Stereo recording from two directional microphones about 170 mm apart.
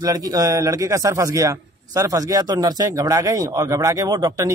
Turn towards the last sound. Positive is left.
turn(degrees=-20)  # may be behind; listen again after turning